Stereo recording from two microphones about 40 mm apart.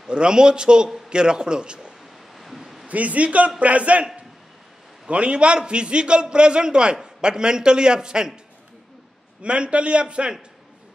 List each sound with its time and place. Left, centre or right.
0.0 s a man's voice: right
2.3 s a sound: centre
2.9 s a man's voice: right; by 8.3 s centre
9.4 s a man's voice: right